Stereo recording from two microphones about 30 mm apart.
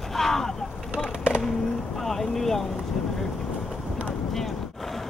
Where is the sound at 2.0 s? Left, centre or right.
Centre.